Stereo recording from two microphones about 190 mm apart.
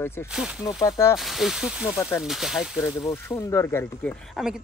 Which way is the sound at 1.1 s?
Centre (ahead or behind).